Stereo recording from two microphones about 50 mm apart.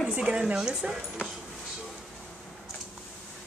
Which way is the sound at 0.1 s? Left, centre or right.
Centre.